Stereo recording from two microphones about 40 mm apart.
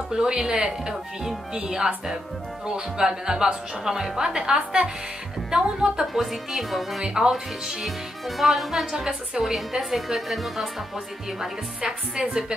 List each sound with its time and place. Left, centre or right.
0.1 s speech: centre
6.1 s speech: centre
7.0 s speech: centre
8.4 s speech: centre
11.8 s speech: right